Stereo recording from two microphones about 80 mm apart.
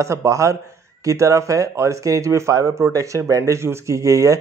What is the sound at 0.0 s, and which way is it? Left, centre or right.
A man's voice, right.